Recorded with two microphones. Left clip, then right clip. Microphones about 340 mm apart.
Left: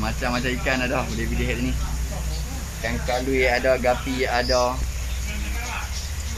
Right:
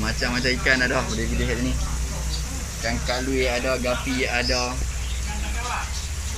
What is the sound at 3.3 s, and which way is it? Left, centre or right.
Speech, centre.